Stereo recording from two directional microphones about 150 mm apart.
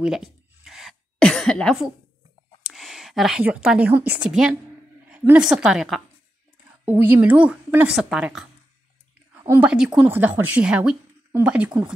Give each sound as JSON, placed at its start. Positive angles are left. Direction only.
{"t": 0.0, "sound": "a sound", "side_deg": -5}
{"t": 2.7, "sound": "a woman's voice", "side_deg": 0}
{"t": 6.8, "sound": "a woman's voice", "side_deg": -10}
{"t": 9.6, "sound": "a woman's voice", "side_deg": -5}